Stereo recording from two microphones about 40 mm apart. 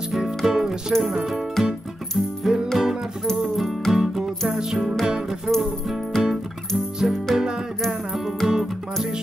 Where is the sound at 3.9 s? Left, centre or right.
Centre.